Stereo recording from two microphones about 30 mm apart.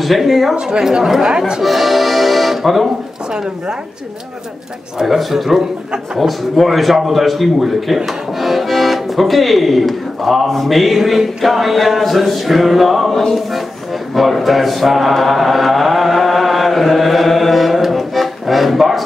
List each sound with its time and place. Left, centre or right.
0.2 s speech: centre
0.6 s a woman's voice: right
1.6 s accordion: centre
5.0 s speech: centre
14.1 s chant: centre